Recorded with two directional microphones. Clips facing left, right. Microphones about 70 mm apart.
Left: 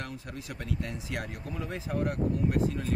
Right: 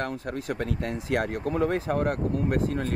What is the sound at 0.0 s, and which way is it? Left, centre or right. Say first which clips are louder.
Speech: right 9 dB; right.